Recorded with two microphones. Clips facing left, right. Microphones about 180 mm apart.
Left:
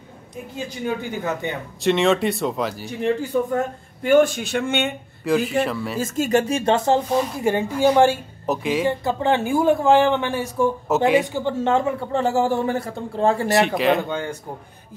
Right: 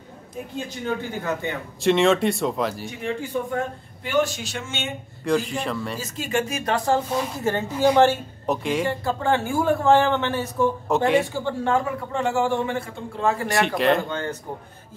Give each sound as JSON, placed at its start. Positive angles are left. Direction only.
{"t": 0.8, "sound": "a man's voice", "side_deg": 20}
{"t": 1.8, "sound": "speech", "side_deg": 0}
{"t": 3.2, "sound": "a man's voice", "side_deg": 45}
{"t": 5.2, "sound": "speech", "side_deg": 5}
{"t": 5.9, "sound": "speech", "side_deg": 45}
{"t": 6.5, "sound": "a man's voice", "side_deg": 25}
{"t": 7.3, "sound": "speech", "side_deg": 15}
{"t": 11.3, "sound": "speech", "side_deg": 20}
{"t": 13.6, "sound": "speech", "side_deg": 0}